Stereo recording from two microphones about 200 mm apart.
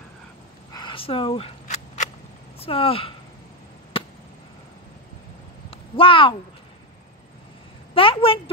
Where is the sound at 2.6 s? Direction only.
30° left (ahead or behind).